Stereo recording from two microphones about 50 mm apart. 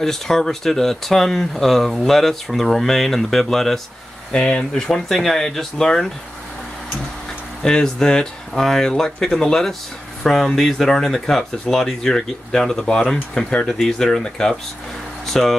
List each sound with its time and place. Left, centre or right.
0.0 s speech: centre
4.3 s speech: centre
7.6 s speech: centre